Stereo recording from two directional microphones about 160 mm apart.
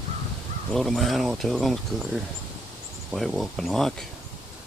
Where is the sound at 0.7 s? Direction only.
Centre (ahead or behind).